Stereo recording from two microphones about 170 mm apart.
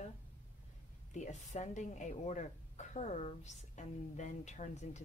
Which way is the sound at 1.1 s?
45° left (ahead or behind).